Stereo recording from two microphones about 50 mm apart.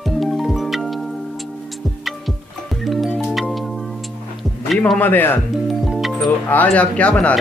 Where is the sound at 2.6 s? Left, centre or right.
Centre.